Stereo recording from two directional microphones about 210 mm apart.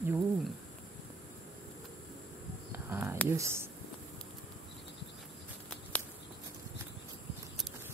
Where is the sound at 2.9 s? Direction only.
10° right (ahead or behind).